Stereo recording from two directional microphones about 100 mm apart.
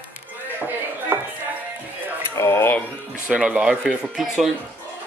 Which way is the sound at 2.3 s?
25° left (ahead or behind).